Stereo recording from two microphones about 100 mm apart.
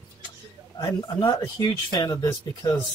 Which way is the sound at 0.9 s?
40° left (ahead or behind).